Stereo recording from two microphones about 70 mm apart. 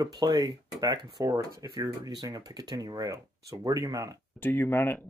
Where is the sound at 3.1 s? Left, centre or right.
Right.